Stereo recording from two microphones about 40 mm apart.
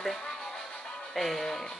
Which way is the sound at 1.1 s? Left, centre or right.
Centre.